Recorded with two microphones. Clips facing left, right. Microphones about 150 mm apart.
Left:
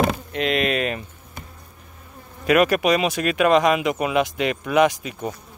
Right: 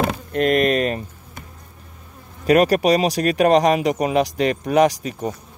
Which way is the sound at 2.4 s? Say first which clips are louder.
Right 2 dB; 35° right (ahead or behind).